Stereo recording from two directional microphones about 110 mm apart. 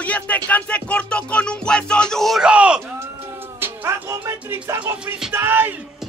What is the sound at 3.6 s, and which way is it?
Music, 25° right (ahead or behind).